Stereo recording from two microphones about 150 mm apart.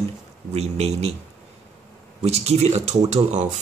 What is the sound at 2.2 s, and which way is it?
Speech, 45° right (ahead or behind).